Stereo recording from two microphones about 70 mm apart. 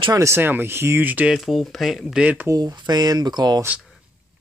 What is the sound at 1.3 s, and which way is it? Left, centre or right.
Speech, centre.